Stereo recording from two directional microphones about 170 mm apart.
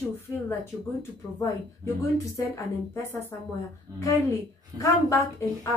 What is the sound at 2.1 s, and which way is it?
A woman's voice, 20° left (ahead or behind).